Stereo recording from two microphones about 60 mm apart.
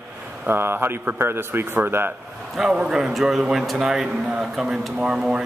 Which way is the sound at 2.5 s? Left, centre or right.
Centre.